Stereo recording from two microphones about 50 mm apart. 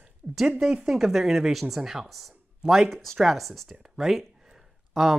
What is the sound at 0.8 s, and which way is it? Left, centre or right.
A woman's voice, centre.